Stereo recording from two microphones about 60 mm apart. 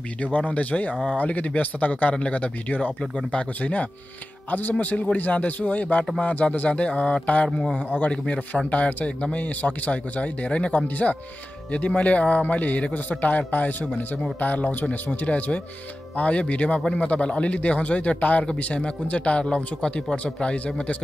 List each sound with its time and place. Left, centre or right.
0.2 s speech: left